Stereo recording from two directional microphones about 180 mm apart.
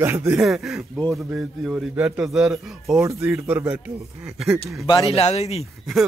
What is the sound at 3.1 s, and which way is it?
Speech, 15° right (ahead or behind).